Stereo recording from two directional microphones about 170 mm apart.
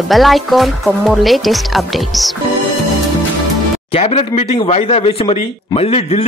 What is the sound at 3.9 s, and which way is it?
Speech, 35° left (ahead or behind).